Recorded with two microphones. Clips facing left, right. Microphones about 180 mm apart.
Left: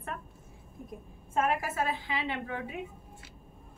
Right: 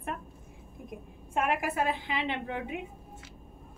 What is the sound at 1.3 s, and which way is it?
A woman's voice, 15° right (ahead or behind).